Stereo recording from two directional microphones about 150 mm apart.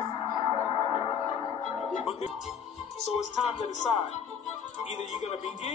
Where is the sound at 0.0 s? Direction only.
25° left (ahead or behind).